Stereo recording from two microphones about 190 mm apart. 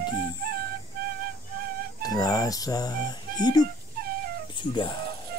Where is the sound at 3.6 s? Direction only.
55° right (ahead or behind).